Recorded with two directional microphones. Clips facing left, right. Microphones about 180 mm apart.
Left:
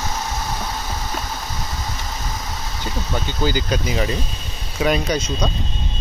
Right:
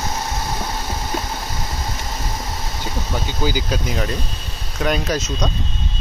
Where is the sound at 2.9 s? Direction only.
10° right (ahead or behind).